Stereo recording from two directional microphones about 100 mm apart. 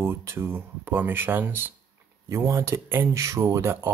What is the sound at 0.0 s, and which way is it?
Speech, 25° right (ahead or behind).